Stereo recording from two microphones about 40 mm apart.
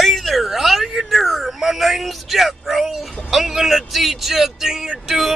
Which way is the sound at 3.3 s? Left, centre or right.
Centre.